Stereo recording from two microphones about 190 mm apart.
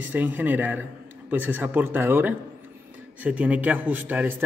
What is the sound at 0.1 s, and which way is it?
A man's voice, 10° right (ahead or behind).